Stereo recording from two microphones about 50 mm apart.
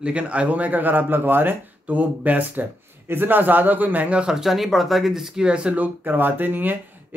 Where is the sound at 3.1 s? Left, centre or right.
Right.